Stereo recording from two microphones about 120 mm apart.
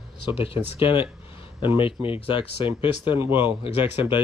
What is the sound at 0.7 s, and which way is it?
Speech, 45° left (ahead or behind).